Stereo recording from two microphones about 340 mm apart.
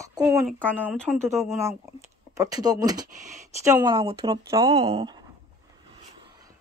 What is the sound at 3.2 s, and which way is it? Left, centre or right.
Speech, right.